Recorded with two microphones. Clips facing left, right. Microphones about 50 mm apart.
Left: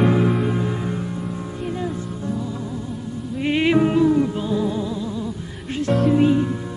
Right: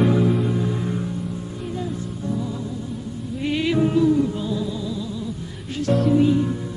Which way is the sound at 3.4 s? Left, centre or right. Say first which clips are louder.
Left 3 dB; left.